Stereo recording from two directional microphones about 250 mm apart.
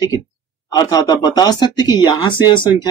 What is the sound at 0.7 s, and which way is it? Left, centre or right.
Speech, centre.